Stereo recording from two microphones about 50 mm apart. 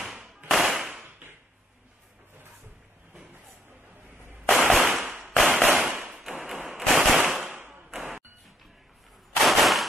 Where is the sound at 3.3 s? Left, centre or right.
Right.